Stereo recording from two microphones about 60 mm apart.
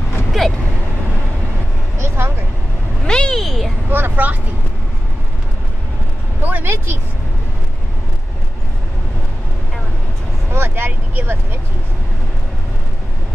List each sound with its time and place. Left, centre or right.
0.3 s speech: centre
2.0 s vehicle: right
3.1 s speech: centre
3.9 s speech: right
6.4 s speech: right
10.5 s speech: right